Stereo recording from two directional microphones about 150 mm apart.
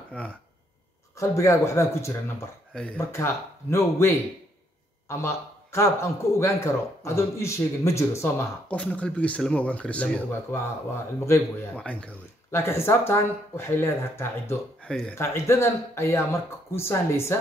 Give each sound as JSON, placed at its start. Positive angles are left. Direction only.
{"t": 0.1, "sound": "speech", "side_deg": 10}
{"t": 1.1, "sound": "a man's voice", "side_deg": 20}
{"t": 2.7, "sound": "speech", "side_deg": 5}
{"t": 3.1, "sound": "a man's voice", "side_deg": 20}
{"t": 8.7, "sound": "speech", "side_deg": 5}
{"t": 11.2, "sound": "speech", "side_deg": 20}
{"t": 14.9, "sound": "speech", "side_deg": 5}
{"t": 15.1, "sound": "a man's voice", "side_deg": 15}